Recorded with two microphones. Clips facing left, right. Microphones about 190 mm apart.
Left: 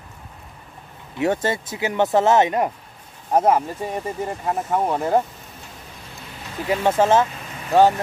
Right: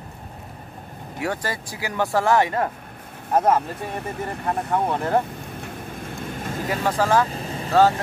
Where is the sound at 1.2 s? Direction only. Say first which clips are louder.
Left 6 dB; 25° left (ahead or behind).